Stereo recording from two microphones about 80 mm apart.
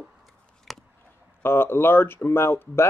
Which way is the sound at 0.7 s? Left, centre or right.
Centre.